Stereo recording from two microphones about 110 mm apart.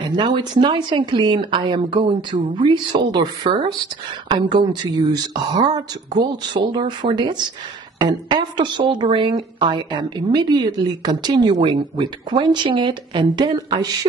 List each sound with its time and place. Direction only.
0.0 s a woman's voice: 45° right (ahead or behind)